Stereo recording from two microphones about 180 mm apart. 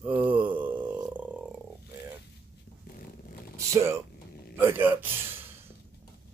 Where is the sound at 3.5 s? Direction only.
15° right (ahead or behind).